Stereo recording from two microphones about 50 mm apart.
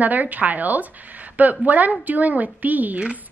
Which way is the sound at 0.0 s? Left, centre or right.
Right.